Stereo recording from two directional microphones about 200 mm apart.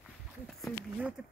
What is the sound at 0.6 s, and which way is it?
Speech, centre (ahead or behind).